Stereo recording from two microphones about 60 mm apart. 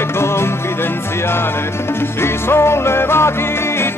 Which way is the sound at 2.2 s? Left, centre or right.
Left.